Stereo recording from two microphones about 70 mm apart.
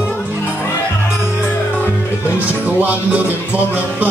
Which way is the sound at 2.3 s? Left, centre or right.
Right.